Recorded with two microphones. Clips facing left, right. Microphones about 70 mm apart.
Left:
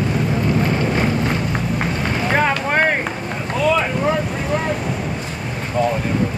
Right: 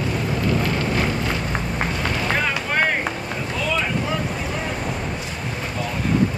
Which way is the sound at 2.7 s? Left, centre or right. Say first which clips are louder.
Left 4 dB; left.